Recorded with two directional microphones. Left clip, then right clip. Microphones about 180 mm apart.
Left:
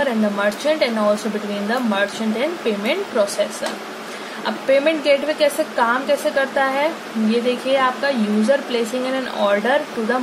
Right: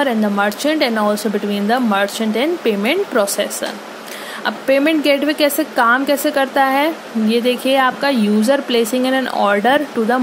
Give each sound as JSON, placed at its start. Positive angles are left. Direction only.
{"t": 0.0, "sound": "a woman's voice", "side_deg": -50}
{"t": 4.5, "sound": "a woman's voice", "side_deg": -50}